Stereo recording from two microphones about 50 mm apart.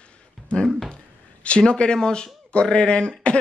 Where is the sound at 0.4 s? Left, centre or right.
Centre.